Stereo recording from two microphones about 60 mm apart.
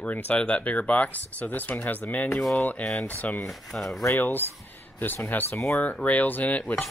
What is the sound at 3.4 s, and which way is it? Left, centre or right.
Speech, centre.